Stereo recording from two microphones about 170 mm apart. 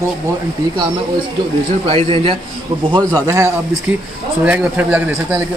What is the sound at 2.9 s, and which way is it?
Speech, 20° right (ahead or behind).